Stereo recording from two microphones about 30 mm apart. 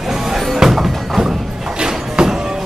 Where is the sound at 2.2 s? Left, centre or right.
Right.